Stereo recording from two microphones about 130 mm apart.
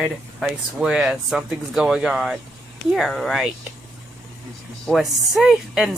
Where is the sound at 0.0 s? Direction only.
5° right (ahead or behind).